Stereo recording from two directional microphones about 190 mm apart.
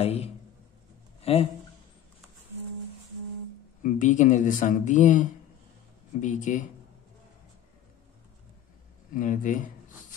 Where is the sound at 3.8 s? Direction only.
40° left (ahead or behind).